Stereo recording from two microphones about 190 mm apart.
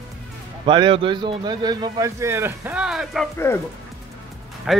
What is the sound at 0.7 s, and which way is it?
Speech, 25° right (ahead or behind).